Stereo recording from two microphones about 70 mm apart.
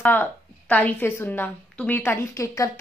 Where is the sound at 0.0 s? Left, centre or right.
Left.